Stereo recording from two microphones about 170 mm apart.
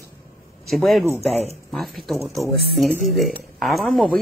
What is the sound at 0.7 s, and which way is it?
Speech, centre (ahead or behind).